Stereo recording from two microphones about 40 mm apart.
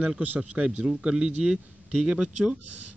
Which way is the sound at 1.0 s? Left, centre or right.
Centre.